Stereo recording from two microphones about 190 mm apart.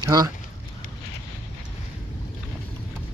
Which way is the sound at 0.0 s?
20° right (ahead or behind).